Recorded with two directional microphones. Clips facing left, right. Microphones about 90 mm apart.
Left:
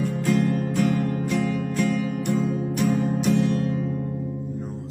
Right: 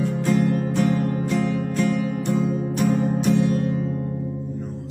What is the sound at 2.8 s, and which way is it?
Music, centre (ahead or behind).